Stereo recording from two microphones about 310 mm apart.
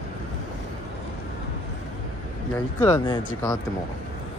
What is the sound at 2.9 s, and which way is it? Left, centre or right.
Speech, centre.